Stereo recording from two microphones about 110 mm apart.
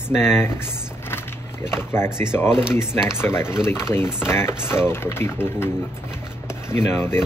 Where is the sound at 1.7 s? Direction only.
20° left (ahead or behind).